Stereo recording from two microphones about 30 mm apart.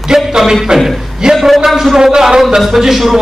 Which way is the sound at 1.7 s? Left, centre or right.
Centre.